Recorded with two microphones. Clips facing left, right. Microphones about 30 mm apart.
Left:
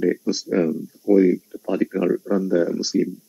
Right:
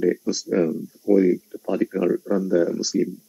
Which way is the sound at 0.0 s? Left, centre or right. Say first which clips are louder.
Left 1 dB; centre.